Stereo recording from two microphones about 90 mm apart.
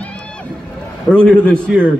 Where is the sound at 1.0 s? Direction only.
10° left (ahead or behind).